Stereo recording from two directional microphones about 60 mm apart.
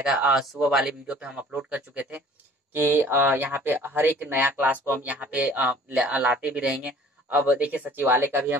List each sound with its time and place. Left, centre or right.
0.0 s speech: centre
2.7 s speech: right
8.0 s speech: right